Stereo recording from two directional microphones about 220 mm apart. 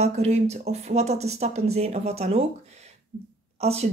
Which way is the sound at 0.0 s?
30° right (ahead or behind).